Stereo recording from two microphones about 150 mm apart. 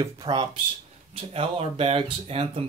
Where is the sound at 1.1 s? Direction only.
40° right (ahead or behind).